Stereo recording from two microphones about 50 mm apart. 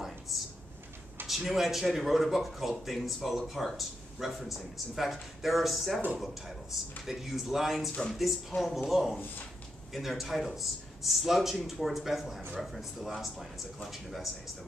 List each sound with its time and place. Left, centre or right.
1.2 s speech: centre